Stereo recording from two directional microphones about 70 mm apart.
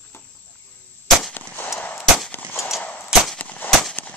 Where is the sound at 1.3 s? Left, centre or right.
Left.